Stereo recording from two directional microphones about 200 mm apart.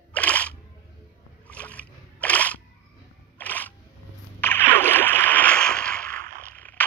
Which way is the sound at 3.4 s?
10° left (ahead or behind).